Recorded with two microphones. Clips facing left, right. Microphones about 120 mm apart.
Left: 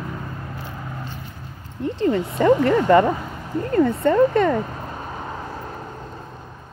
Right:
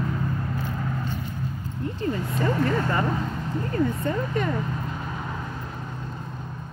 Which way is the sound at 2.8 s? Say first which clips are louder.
Left 9 dB; 75° left (ahead or behind).